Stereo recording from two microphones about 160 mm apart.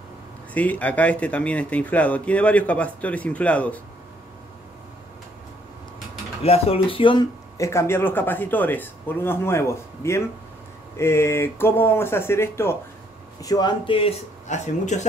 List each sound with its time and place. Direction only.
0.6 s speech: 10° left (ahead or behind)
6.4 s speech: 40° left (ahead or behind)
7.5 s speech: 20° left (ahead or behind); by 15.0 s 45° left (ahead or behind)